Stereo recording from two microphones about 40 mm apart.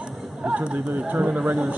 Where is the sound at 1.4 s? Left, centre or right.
Centre.